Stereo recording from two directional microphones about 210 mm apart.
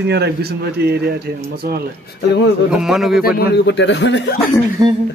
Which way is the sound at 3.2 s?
55° left (ahead or behind).